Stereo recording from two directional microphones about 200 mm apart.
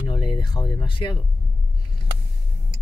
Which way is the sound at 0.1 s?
25° left (ahead or behind).